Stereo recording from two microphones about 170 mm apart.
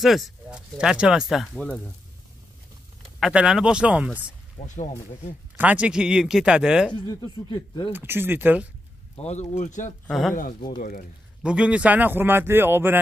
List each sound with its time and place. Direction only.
0.0 s speech: 5° right (ahead or behind)
3.2 s speech: 5° right (ahead or behind)
4.6 s speech: 45° left (ahead or behind)
5.6 s speech: 10° right (ahead or behind)
6.9 s speech: 25° left (ahead or behind)
7.9 s speech: 10° right (ahead or behind)
9.2 s speech: 40° left (ahead or behind)
10.0 s speech: centre (ahead or behind)
10.8 s speech: 55° left (ahead or behind)
11.4 s speech: 5° right (ahead or behind)